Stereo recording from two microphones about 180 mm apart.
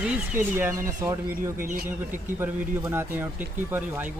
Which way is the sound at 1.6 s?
50° right (ahead or behind).